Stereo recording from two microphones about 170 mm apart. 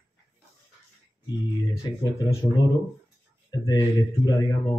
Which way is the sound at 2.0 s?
25° left (ahead or behind).